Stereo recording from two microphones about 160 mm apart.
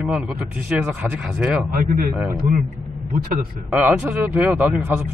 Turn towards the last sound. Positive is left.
turn(degrees=-10)  # may be behind; listen again after turning